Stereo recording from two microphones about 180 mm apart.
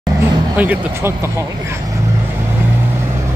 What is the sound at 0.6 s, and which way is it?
Speech, 10° right (ahead or behind).